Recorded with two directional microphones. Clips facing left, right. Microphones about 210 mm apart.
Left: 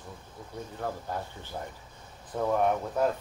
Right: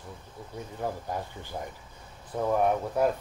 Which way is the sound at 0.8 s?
15° right (ahead or behind).